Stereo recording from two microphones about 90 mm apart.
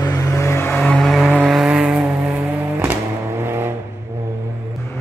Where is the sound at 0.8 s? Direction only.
10° left (ahead or behind).